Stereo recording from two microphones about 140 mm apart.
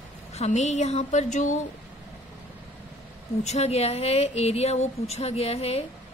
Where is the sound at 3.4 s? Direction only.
50° left (ahead or behind).